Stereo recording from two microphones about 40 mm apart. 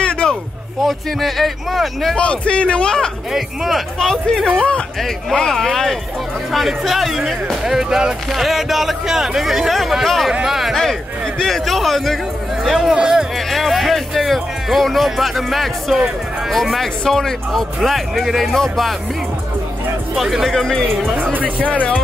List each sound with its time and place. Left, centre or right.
0.0 s a sound: left
0.8 s speech: centre
2.1 s a man's voice: left
3.3 s speech: centre
4.0 s speech: centre
10.4 s a sound: centre
10.7 s speech: centre
13.5 s speech: centre
17.8 s speech: centre
20.2 s speech: centre
21.2 s speech: right